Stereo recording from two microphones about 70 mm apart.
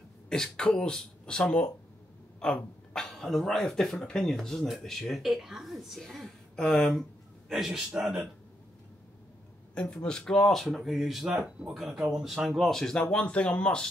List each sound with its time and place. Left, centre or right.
0.3 s a man's voice: centre
10.0 s speech: centre
13.0 s speech: centre